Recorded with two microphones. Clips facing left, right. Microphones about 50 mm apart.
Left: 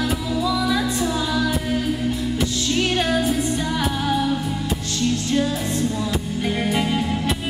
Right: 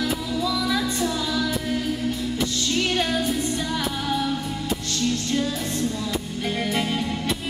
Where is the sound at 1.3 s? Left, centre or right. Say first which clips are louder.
Left 3 dB; centre.